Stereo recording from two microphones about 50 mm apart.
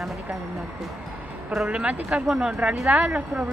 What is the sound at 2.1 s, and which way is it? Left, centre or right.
Speech, centre.